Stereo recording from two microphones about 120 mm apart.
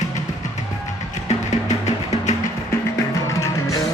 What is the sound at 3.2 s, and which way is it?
Music, 25° left (ahead or behind).